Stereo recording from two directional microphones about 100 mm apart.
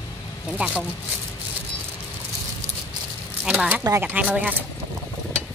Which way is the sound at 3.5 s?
15° right (ahead or behind).